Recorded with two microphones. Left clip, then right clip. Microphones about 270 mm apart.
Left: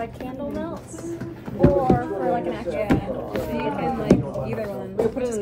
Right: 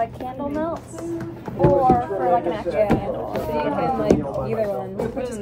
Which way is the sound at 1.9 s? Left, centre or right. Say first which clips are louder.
Right 4 dB; right.